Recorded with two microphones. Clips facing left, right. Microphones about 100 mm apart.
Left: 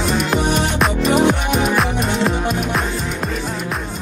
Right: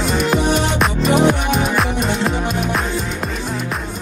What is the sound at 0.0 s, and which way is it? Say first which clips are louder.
Music: right 1 dB; centre (ahead or behind).